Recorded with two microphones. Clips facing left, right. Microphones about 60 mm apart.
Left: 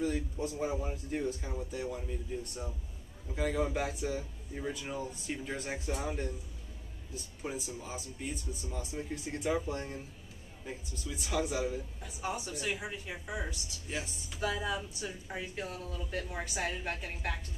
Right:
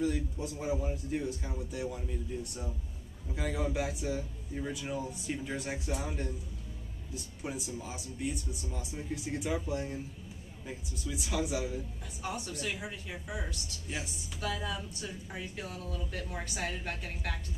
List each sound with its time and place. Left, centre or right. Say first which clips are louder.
0.0 s speech: right 1 dB; centre
0.7 s speech: right 1 dB; centre
7.4 s speech: even; centre
11.3 s speech: left 1 dB; centre